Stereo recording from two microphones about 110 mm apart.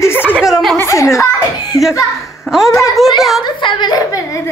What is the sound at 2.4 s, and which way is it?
A woman's voice, centre (ahead or behind).